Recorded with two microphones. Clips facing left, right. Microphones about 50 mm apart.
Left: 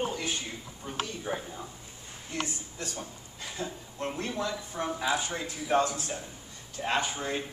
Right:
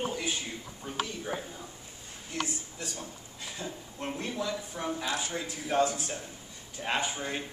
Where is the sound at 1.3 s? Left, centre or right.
Centre.